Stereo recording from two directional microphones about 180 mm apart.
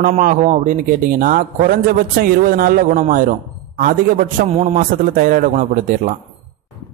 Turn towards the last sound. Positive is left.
turn(degrees=-50)  # may be behind; listen again after turning